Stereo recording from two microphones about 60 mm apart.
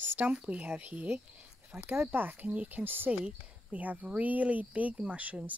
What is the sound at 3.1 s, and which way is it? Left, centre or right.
Speech, right.